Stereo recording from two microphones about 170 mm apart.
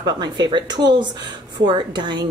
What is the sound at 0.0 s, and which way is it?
Speech, 25° right (ahead or behind).